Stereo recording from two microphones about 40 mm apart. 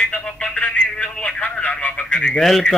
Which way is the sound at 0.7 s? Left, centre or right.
Left.